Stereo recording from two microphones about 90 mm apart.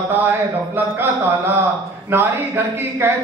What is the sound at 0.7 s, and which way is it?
A man's voice, 25° right (ahead or behind).